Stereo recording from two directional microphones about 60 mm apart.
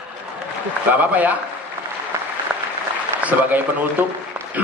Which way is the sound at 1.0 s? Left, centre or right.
Right.